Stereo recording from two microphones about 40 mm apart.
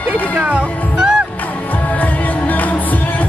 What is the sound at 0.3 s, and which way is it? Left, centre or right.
Speech, right.